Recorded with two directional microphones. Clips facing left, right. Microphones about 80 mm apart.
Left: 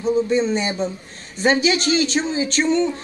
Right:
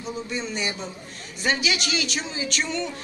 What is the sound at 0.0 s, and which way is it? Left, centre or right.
Speech, left.